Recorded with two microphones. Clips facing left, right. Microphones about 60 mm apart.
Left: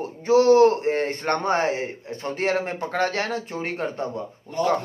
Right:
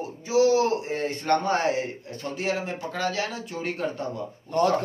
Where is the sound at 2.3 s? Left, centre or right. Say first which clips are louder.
Left 4 dB; left.